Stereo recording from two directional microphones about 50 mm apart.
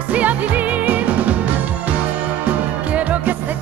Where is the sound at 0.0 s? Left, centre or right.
Right.